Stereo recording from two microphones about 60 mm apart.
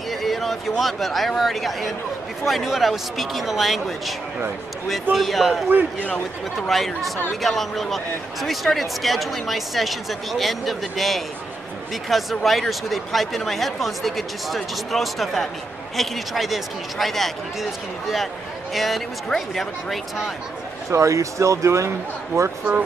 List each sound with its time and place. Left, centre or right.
0.1 s a man's voice: centre
5.1 s a man's voice: centre
5.7 s a man's voice: right
6.0 s speech: left
6.7 s a man's voice: centre
20.9 s speech: right